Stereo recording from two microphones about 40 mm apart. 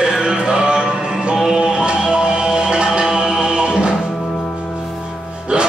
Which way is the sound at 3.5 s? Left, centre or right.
Right.